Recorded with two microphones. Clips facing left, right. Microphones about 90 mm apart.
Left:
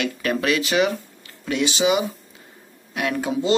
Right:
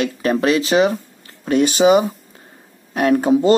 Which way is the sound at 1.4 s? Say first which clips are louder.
Right 7 dB; 45° right (ahead or behind).